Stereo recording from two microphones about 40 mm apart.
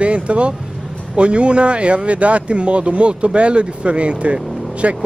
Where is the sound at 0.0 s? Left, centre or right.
Right.